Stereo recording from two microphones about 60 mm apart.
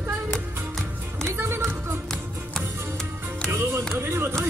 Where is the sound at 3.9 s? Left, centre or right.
Right.